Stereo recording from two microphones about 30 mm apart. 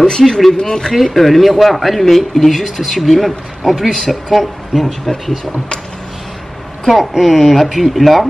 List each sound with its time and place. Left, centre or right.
0.3 s speech: centre
0.6 s speech: left
1.1 s speech: centre
5.0 s speech: centre
6.9 s speech: centre